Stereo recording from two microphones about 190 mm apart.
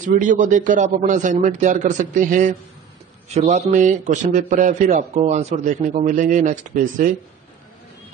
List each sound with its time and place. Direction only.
0.0 s a man's voice: 45° right (ahead or behind)